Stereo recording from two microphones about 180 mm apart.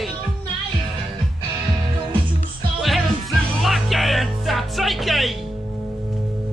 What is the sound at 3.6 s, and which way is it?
Music, centre (ahead or behind).